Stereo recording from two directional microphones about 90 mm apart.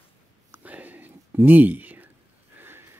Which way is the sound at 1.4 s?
20° right (ahead or behind).